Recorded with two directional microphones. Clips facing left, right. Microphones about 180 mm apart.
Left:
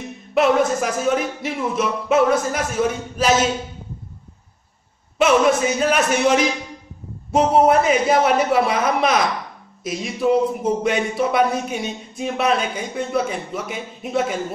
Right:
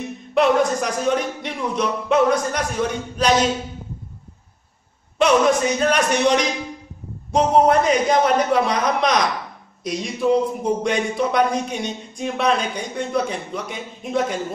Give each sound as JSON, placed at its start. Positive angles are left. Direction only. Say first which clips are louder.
{"t": 0.3, "sound": "speech", "louder": "even", "side_deg": 5}
{"t": 5.2, "sound": "speech", "louder": "even", "side_deg": 5}